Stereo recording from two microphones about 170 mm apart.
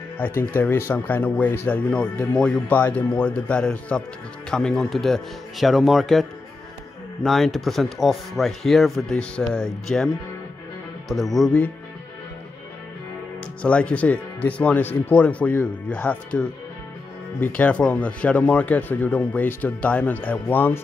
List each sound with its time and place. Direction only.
0.4 s speech: 15° left (ahead or behind)
7.2 s speech: centre (ahead or behind)
13.6 s speech: 5° left (ahead or behind)
17.6 s speech: 5° left (ahead or behind)